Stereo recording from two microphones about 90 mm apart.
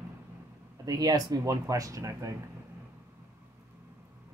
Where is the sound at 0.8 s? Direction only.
45° right (ahead or behind).